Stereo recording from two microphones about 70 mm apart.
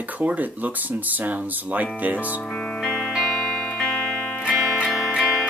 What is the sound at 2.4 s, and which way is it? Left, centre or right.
Music, centre.